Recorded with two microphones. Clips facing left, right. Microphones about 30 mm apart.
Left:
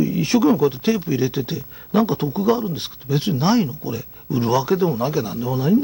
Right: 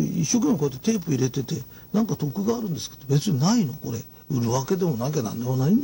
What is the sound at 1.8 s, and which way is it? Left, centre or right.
Speech, left.